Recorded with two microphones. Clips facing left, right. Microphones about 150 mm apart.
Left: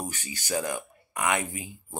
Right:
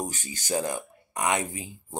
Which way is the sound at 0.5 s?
25° right (ahead or behind).